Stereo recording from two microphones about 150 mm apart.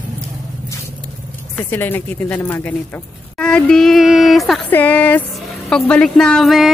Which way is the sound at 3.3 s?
5° left (ahead or behind).